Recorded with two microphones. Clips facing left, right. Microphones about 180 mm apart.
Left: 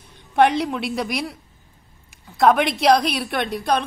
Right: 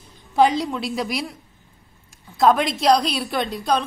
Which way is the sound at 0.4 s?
65° left (ahead or behind).